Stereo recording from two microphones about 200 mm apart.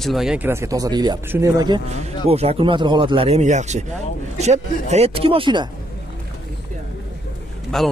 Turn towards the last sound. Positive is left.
turn(degrees=0)  # may be behind; listen again after turning